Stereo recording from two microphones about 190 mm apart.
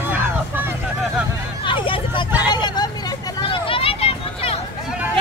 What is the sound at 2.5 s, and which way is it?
Hubbub, 20° left (ahead or behind).